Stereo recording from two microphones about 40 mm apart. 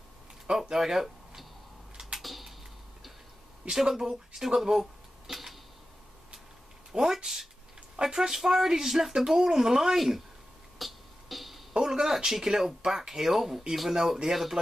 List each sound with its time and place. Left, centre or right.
0.5 s a sound: centre
3.7 s speech: centre
4.6 s a sound: centre
6.9 s speech: centre
10.8 s music: centre
11.7 s speech: centre